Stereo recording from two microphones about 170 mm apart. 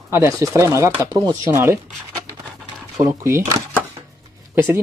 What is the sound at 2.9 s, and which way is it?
Speech, 15° right (ahead or behind).